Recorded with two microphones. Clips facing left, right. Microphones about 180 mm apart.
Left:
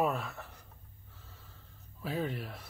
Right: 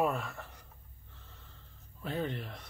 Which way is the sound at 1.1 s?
5° left (ahead or behind).